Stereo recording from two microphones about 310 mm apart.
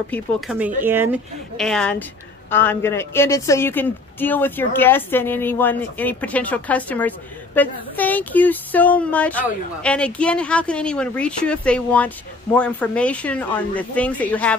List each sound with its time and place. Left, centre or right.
0.1 s speech: centre